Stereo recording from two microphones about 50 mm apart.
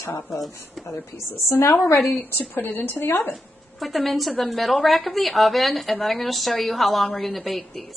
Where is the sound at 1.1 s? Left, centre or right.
Left.